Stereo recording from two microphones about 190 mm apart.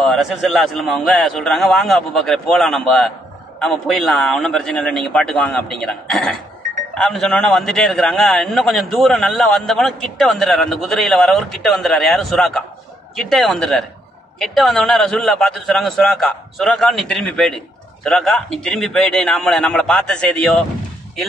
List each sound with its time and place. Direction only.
0.0 s a man's voice: centre (ahead or behind)